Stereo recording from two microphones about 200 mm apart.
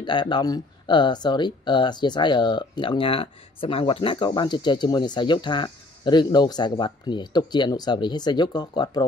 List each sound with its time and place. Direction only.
0.0 s speech: 20° left (ahead or behind)